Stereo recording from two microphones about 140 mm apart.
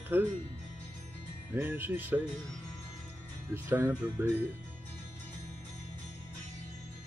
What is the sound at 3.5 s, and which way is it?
Speech, 15° right (ahead or behind).